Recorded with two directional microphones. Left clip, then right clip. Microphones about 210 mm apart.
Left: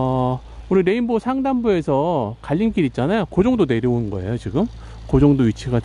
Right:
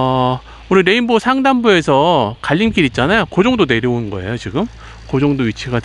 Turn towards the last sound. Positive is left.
turn(degrees=20)  # may be behind; listen again after turning